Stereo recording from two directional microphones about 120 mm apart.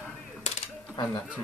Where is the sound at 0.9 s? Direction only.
35° left (ahead or behind).